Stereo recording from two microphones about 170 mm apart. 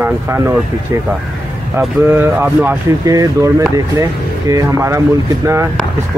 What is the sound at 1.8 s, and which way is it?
Speech, 10° right (ahead or behind).